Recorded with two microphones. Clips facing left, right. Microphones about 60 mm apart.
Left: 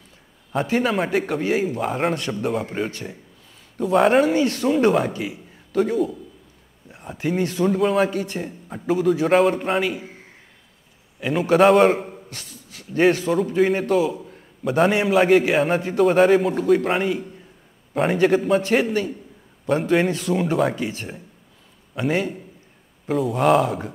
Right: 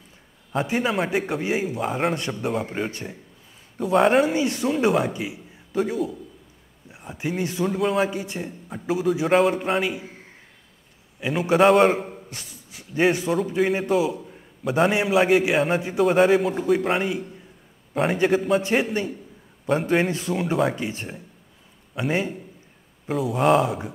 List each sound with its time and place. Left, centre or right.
0.7 s a man's voice: centre
8.1 s speech: centre
8.4 s a man's voice: centre
11.1 s a man's voice: centre
12.3 s beatboxing: centre
13.3 s a man's voice: centre
20.1 s speech: centre
20.3 s a man's voice: centre
21.9 s a man's voice: centre